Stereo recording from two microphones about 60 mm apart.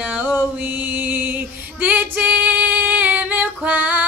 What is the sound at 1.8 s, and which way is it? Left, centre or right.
Female singing, right.